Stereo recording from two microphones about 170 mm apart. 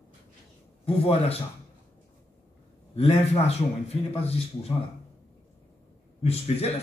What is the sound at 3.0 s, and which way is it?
A man's voice, 35° left (ahead or behind).